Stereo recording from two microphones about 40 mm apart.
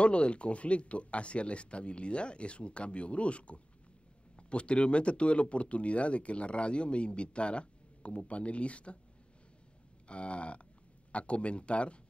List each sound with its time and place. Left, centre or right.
0.0 s speech: left
10.0 s speech: left